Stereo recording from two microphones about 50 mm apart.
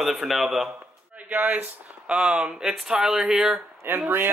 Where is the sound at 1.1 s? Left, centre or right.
Right.